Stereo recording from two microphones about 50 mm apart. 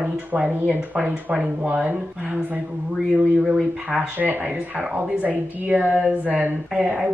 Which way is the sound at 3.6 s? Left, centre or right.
Centre.